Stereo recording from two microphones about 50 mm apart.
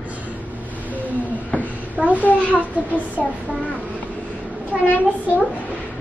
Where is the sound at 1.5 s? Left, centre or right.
Left.